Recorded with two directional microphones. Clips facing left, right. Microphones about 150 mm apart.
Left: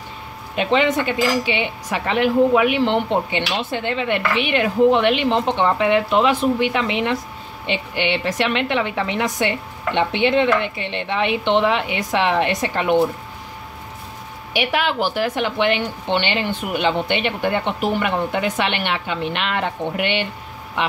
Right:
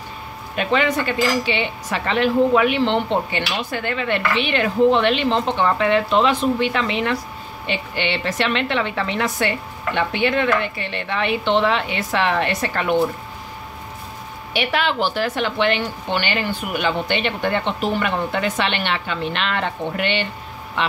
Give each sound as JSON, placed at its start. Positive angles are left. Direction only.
{"t": 0.6, "sound": "speech", "side_deg": 20}
{"t": 14.5, "sound": "speech", "side_deg": 10}